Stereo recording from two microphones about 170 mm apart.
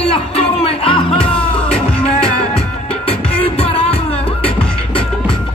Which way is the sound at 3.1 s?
35° left (ahead or behind).